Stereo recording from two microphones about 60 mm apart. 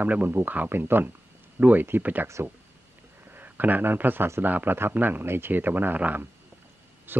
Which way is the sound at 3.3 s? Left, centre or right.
Right.